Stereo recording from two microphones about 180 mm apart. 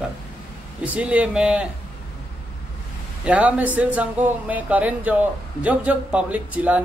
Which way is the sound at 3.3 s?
10° right (ahead or behind).